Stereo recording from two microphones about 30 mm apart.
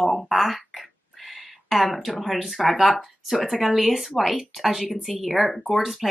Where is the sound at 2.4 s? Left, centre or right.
Centre.